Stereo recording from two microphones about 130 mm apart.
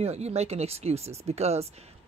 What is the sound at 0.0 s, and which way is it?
Speech, 55° right (ahead or behind).